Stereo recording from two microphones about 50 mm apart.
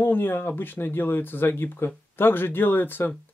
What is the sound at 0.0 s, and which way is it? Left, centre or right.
Speech, left.